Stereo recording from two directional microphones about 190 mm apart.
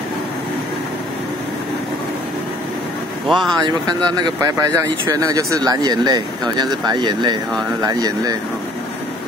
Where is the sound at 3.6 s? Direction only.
20° right (ahead or behind).